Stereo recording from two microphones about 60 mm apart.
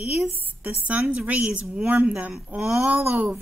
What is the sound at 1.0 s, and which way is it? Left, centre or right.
Speech, centre.